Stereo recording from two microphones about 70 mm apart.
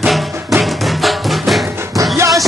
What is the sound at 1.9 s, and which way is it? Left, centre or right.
Music, right.